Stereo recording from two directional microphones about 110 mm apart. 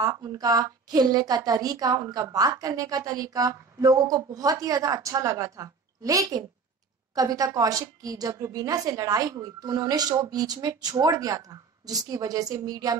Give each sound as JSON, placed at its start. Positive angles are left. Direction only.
{"t": 0.0, "sound": "a woman's voice", "side_deg": -35}